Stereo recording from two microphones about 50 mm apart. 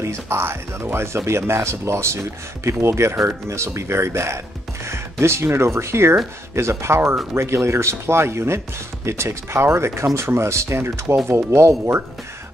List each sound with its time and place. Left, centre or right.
0.0 s speech: right